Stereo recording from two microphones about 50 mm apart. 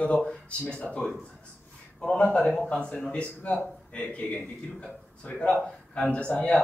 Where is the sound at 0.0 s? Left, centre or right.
Centre.